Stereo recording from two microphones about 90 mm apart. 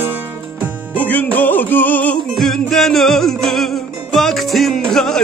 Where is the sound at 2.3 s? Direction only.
5° left (ahead or behind).